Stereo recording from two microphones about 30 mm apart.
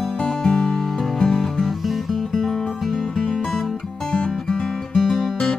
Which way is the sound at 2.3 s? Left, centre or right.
Centre.